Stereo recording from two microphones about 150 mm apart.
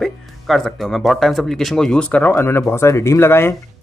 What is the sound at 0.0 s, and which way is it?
Speech, centre (ahead or behind).